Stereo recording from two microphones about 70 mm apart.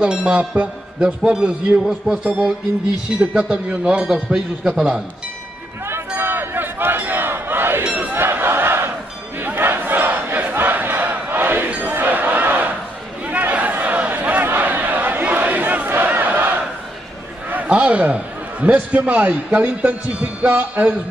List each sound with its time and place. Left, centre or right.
0.0 s a man's voice: centre
5.9 s crowd: right
7.8 s a sound: centre
8.1 s battle cry: right
13.3 s a sound: right
15.9 s crowd: right
17.5 s a man's voice: right